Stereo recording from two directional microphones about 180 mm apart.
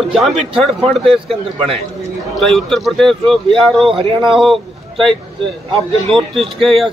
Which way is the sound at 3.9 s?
30° right (ahead or behind).